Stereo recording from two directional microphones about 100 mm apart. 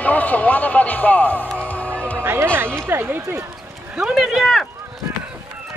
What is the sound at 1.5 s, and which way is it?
Music, 15° left (ahead or behind).